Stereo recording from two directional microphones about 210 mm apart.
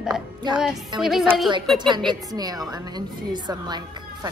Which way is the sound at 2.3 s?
20° right (ahead or behind).